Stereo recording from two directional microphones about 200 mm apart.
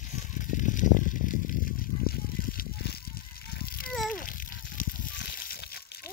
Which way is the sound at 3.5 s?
50° left (ahead or behind).